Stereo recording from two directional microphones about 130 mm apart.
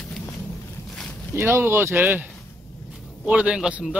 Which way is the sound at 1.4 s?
15° right (ahead or behind).